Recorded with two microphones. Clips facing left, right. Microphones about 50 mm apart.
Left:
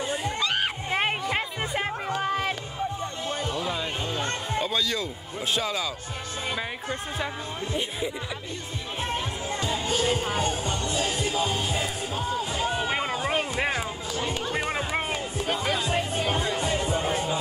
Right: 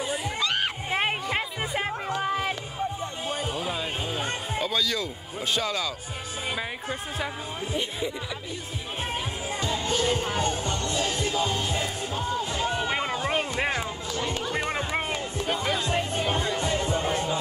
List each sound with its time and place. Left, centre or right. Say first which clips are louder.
0.8 s music: even; centre
3.3 s music: left 1 dB; centre
4.6 s a sound: right 3 dB; centre
5.5 s speech: even; centre
6.5 s music: even; centre
9.0 s music: left 2 dB; centre
9.9 s music: even; left
12.5 s a sound: left 1 dB; centre
13.3 s music: even; centre
15.4 s speech: even; centre
15.9 s music: even; centre
16.5 s music: even; centre